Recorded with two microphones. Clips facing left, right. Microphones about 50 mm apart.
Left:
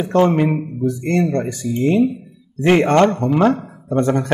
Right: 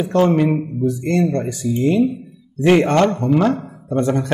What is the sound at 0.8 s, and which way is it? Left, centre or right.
Speech, left.